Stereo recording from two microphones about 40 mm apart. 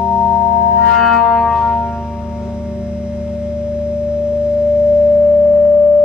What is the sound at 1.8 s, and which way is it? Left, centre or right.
Music, right.